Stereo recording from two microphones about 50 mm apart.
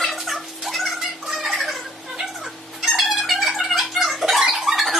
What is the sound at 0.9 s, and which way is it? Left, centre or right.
Music, centre.